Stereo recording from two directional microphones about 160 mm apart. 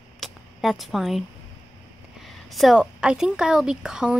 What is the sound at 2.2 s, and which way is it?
A woman's voice, centre (ahead or behind).